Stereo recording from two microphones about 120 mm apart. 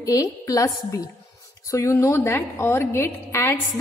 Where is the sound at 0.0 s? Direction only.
30° left (ahead or behind).